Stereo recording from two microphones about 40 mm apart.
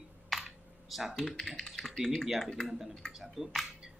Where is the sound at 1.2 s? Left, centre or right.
Centre.